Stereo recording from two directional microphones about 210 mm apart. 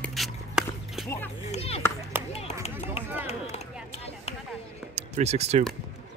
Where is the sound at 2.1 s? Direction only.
10° right (ahead or behind).